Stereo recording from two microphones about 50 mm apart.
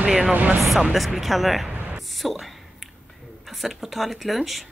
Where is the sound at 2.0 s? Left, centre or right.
Centre.